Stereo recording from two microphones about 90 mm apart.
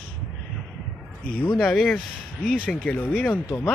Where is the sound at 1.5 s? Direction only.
5° left (ahead or behind).